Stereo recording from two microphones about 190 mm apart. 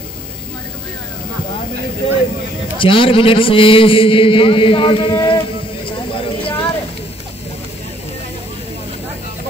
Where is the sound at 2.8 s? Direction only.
25° left (ahead or behind).